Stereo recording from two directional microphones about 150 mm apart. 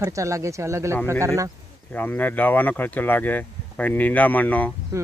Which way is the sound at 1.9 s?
10° left (ahead or behind).